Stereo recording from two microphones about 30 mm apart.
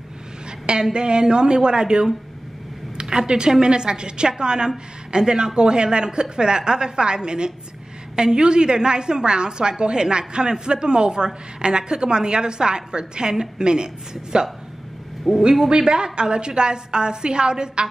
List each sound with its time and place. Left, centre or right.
0.9 s a woman's voice: right
15.2 s a man's voice: centre
15.7 s a woman's voice: right